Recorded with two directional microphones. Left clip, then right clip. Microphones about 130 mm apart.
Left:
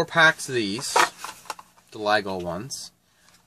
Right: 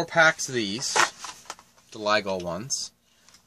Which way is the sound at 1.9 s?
15° right (ahead or behind).